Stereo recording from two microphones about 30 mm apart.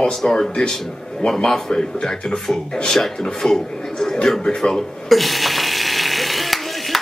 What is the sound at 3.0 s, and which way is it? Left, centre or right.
A man's voice, centre.